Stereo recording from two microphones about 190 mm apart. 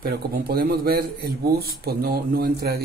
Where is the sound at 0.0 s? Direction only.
50° right (ahead or behind).